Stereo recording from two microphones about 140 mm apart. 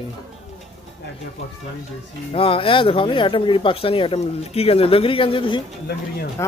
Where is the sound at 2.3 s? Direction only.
40° left (ahead or behind).